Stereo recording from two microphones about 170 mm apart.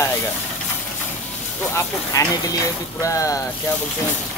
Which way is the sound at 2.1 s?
20° left (ahead or behind).